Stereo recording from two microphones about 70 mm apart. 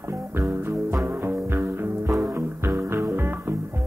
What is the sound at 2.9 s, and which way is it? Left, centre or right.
Music, right.